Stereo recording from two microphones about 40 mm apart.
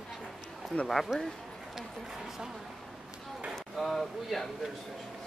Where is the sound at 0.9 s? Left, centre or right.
Centre.